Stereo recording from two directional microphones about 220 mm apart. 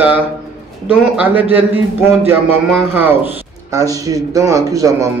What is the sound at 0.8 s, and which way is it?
Speech, 10° right (ahead or behind).